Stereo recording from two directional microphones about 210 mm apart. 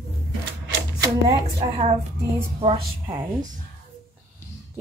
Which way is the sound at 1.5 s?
30° right (ahead or behind).